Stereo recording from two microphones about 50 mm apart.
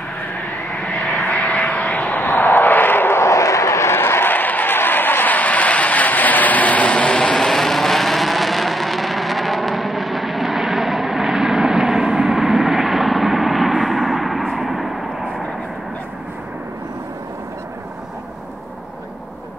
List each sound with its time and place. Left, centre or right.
1.2 s vehicle: left
2.1 s vehicle: left
3.3 s vehicle: left
3.9 s vehicle: left
7.3 s vehicle: centre